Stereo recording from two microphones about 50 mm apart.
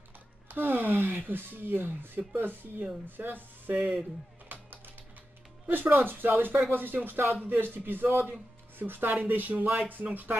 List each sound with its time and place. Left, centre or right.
0.5 s speech: right
4.5 s music: right
5.7 s speech: right